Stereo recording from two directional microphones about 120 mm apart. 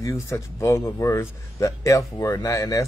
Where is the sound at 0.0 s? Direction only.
25° left (ahead or behind).